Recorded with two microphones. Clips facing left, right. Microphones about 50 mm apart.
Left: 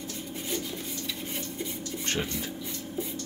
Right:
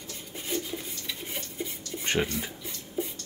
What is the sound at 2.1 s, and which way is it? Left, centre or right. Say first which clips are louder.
Speech: right 4 dB; centre.